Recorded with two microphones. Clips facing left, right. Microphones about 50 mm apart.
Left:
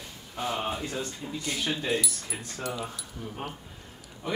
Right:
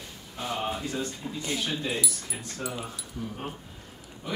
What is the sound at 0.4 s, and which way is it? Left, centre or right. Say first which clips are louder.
Speech: left 1 dB; centre.